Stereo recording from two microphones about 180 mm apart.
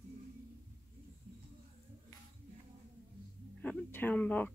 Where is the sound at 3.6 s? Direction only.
10° left (ahead or behind).